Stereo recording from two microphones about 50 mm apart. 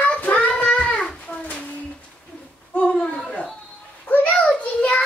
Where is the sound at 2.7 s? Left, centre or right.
Left.